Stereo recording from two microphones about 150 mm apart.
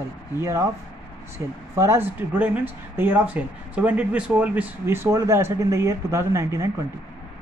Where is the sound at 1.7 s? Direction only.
15° right (ahead or behind).